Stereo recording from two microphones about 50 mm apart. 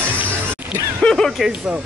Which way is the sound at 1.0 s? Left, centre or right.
Centre.